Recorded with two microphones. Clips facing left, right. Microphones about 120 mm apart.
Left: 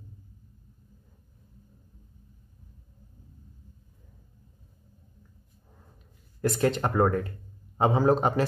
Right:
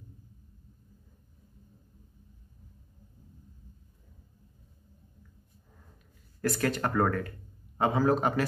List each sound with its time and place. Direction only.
6.4 s speech: 25° left (ahead or behind)